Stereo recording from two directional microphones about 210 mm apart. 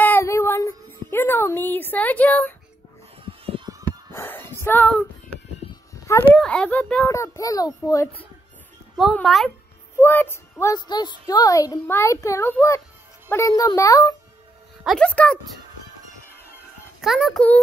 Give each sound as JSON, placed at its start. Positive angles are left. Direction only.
{"t": 0.0, "sound": "child singing", "side_deg": 10}
{"t": 3.3, "sound": "a sound", "side_deg": -25}
{"t": 4.1, "sound": "a sound", "side_deg": 10}
{"t": 4.6, "sound": "a woman's voice", "side_deg": 5}
{"t": 6.3, "sound": "a woman's voice", "side_deg": 5}
{"t": 14.8, "sound": "a child's voice", "side_deg": 0}
{"t": 17.0, "sound": "a child's voice", "side_deg": 0}